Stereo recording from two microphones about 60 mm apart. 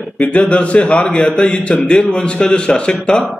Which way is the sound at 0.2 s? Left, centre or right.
Left.